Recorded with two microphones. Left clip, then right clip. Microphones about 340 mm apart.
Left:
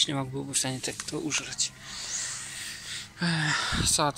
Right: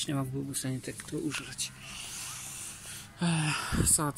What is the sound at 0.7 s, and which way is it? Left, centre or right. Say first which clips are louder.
Speech: left 5 dB; left.